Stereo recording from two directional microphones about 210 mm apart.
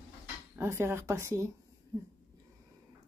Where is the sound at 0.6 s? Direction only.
10° right (ahead or behind).